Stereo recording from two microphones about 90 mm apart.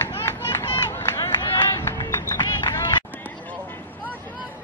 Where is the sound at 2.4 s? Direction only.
55° left (ahead or behind).